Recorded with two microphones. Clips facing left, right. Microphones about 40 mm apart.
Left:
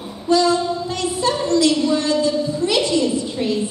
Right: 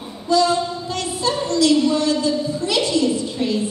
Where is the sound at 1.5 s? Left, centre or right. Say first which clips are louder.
Right 1 dB; left.